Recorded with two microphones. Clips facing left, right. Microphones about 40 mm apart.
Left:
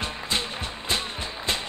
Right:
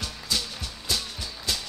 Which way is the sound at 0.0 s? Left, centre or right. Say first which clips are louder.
Left 3 dB; left.